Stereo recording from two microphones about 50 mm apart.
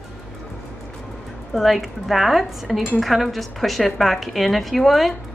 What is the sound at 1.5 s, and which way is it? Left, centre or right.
Speech, centre.